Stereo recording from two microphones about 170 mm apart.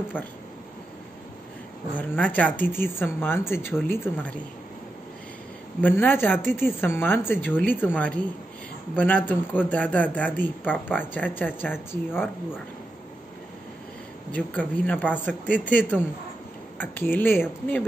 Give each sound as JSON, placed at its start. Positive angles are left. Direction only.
{"t": 0.1, "sound": "speech", "side_deg": 10}
{"t": 2.0, "sound": "speech", "side_deg": 10}
{"t": 5.8, "sound": "speech", "side_deg": 10}
{"t": 14.3, "sound": "speech", "side_deg": 10}